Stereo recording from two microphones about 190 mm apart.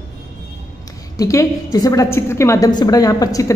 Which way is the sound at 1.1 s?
15° left (ahead or behind).